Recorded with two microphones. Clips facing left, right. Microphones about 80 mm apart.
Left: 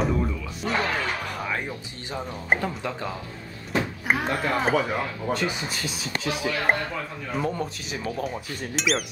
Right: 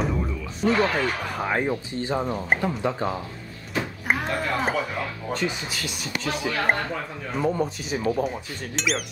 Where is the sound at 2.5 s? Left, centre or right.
Centre.